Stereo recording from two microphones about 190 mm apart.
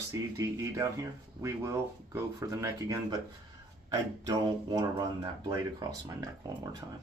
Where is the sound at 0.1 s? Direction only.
15° right (ahead or behind).